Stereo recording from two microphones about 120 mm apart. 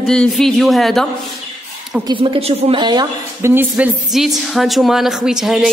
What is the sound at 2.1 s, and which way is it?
Speech, 50° right (ahead or behind).